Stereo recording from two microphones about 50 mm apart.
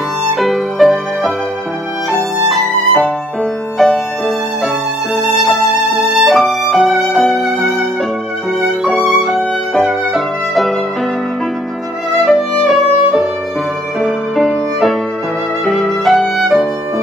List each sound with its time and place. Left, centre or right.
0.2 s music: centre
2.4 s music: centre
5.1 s music: centre
8.5 s violin: centre
12.3 s violin: centre
14.0 s music: centre